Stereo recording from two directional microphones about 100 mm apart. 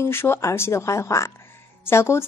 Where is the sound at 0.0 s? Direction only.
25° left (ahead or behind).